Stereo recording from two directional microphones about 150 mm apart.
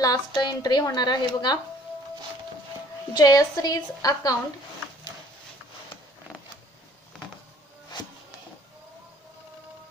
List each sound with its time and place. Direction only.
0.0 s a woman's voice: 25° left (ahead or behind)
3.1 s a woman's voice: 25° left (ahead or behind)